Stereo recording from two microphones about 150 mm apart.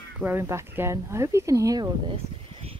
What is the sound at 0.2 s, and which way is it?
Speech, 15° right (ahead or behind).